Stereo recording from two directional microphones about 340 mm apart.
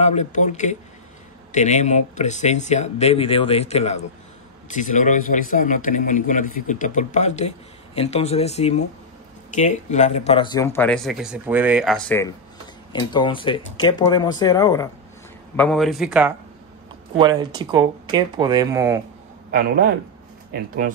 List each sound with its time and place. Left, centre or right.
0.0 s a man's voice: centre
19.5 s a man's voice: right